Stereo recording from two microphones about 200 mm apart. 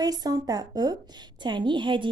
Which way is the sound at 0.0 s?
20° right (ahead or behind).